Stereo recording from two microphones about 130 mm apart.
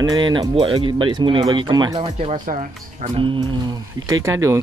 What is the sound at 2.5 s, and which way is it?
Speech, 90° right.